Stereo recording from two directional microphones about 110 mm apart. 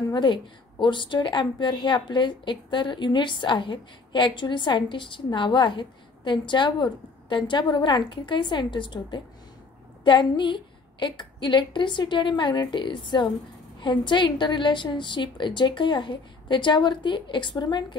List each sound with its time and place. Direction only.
0.1 s a woman's voice: 45° left (ahead or behind)